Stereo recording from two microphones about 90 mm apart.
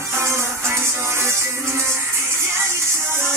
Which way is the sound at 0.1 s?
30° right (ahead or behind).